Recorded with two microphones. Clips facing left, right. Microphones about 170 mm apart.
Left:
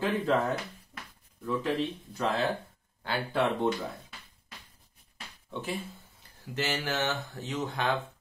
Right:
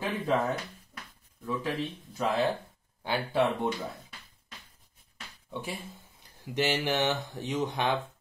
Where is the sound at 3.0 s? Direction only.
15° right (ahead or behind).